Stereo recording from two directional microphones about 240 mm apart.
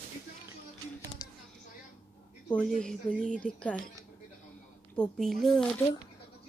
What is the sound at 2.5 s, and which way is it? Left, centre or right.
Speech, centre.